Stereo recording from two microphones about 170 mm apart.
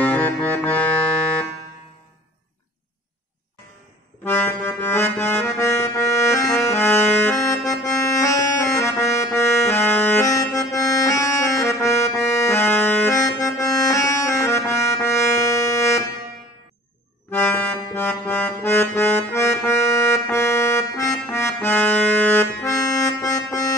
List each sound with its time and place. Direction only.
0.0 s music: 10° left (ahead or behind)
4.2 s accordion: 10° left (ahead or behind)
17.3 s accordion: 10° left (ahead or behind)